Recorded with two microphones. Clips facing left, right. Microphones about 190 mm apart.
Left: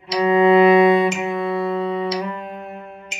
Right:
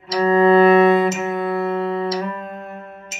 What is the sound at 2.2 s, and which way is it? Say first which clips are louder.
Music: right 1 dB; 15° left (ahead or behind).